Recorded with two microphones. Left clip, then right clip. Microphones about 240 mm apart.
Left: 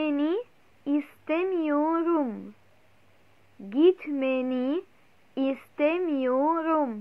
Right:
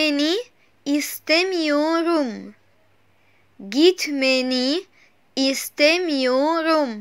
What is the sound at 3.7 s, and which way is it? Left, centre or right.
Speech, right.